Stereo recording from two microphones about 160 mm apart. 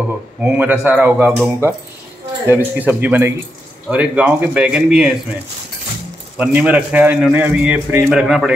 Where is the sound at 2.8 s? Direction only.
10° right (ahead or behind).